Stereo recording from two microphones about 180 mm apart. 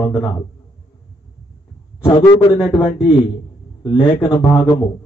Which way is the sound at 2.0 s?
20° left (ahead or behind).